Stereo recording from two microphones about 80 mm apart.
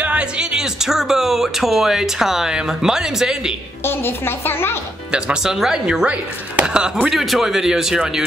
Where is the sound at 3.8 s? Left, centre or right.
Left.